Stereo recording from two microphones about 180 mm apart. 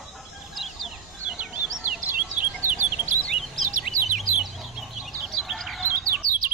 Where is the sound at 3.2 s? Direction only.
Centre (ahead or behind).